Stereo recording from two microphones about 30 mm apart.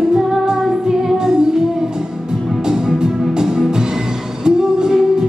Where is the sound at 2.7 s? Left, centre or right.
Right.